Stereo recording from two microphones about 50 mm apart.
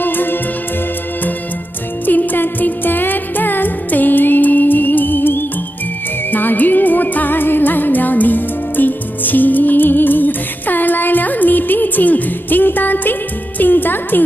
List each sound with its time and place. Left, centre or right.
0.0 s music: left
2.0 s music: left